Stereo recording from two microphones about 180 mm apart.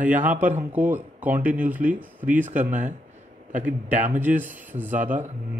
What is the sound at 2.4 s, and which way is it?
Speech, 45° right (ahead or behind).